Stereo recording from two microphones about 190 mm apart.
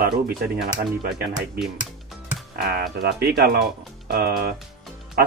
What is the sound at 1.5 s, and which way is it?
Music, centre (ahead or behind).